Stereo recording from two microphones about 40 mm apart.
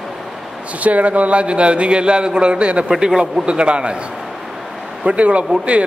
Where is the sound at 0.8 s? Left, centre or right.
Right.